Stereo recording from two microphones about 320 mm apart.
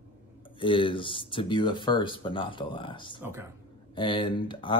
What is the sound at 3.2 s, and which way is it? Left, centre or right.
Speech, centre.